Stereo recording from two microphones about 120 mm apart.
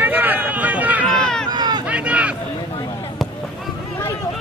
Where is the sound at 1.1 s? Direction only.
5° left (ahead or behind).